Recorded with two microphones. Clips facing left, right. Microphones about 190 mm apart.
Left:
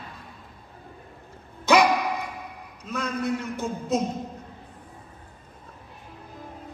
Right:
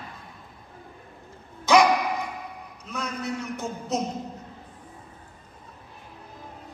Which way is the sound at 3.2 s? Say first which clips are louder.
Left 3 dB; 55° left (ahead or behind).